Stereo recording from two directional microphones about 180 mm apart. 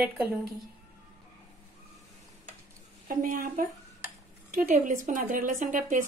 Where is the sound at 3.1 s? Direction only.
50° right (ahead or behind).